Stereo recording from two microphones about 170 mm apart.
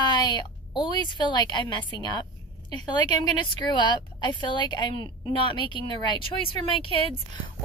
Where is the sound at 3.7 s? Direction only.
25° left (ahead or behind).